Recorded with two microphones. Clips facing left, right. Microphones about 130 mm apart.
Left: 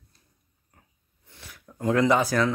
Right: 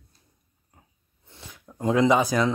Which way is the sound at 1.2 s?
25° right (ahead or behind).